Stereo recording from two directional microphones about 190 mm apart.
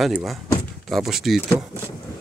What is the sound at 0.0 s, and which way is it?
Speech, centre (ahead or behind).